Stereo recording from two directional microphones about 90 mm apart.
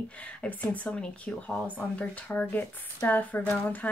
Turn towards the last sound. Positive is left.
turn(degrees=20)  # may be behind; listen again after turning